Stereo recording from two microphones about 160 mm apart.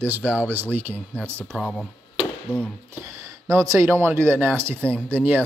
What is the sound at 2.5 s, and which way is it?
Speech, 15° right (ahead or behind).